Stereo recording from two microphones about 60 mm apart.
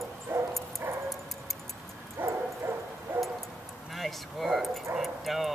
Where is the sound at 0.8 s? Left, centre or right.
Right.